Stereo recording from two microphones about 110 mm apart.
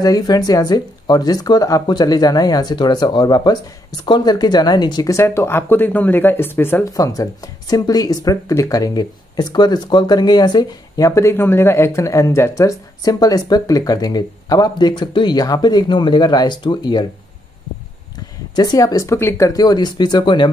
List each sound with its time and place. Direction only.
0.0 s speech: 35° left (ahead or behind); by 6.9 s 20° left (ahead or behind)
6.9 s speech: 30° left (ahead or behind)
18.5 s speech: 35° left (ahead or behind)